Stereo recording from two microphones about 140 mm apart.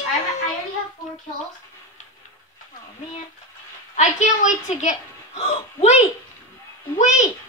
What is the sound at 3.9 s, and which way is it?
A woman's voice, 60° left (ahead or behind).